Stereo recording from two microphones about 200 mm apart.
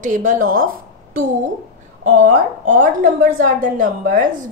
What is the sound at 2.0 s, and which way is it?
A woman's voice, 40° right (ahead or behind).